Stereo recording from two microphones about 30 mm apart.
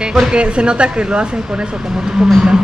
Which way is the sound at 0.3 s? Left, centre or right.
Right.